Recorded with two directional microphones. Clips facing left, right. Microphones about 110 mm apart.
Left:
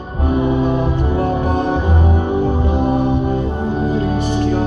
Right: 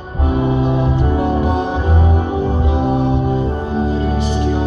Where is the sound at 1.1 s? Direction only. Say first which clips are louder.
Even; 20° right (ahead or behind).